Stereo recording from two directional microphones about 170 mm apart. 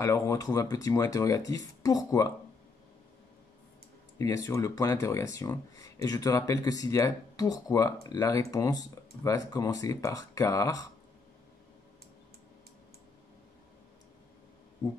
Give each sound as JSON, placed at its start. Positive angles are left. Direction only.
{"t": 0.0, "sound": "speech", "side_deg": 20}
{"t": 4.2, "sound": "speech", "side_deg": 20}